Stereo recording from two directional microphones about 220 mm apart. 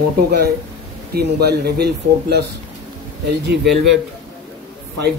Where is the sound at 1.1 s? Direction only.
45° right (ahead or behind).